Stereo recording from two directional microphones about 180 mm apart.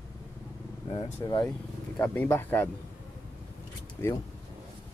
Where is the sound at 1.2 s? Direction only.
20° left (ahead or behind).